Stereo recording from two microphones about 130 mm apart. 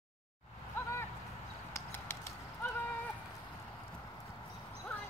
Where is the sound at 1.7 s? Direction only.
20° left (ahead or behind).